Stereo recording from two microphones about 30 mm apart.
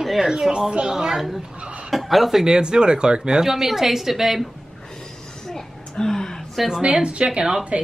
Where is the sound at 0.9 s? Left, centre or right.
Centre.